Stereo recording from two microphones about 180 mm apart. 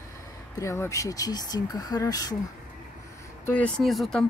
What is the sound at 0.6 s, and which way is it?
Speech, 15° left (ahead or behind).